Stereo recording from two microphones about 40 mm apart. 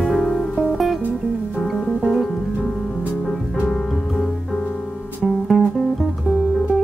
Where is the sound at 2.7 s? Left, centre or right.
Left.